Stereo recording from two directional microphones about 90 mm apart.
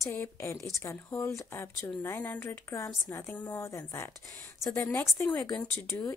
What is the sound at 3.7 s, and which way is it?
Speech, 35° left (ahead or behind).